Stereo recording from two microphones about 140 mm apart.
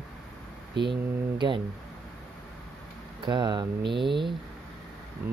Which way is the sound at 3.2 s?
30° right (ahead or behind).